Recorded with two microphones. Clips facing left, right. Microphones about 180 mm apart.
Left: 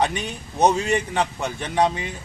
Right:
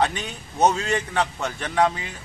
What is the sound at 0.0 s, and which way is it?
A man's voice, 15° left (ahead or behind).